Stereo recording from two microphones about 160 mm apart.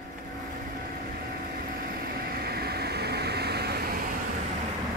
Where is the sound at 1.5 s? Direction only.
70° right (ahead or behind).